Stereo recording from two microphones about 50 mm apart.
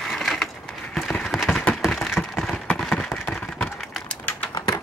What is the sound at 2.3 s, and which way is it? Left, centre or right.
Clip-clop, centre.